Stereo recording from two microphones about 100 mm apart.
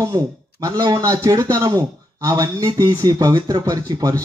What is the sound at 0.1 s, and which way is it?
A man's voice, 45° right (ahead or behind).